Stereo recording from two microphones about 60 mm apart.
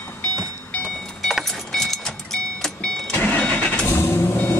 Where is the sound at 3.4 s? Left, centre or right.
Left.